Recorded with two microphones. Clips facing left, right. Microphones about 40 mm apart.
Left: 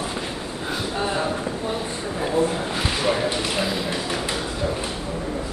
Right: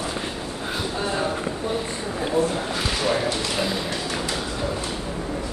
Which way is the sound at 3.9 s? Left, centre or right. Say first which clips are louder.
Left 1 dB; centre.